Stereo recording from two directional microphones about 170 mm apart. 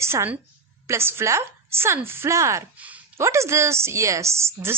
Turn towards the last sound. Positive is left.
turn(degrees=-15)  # may be behind; listen again after turning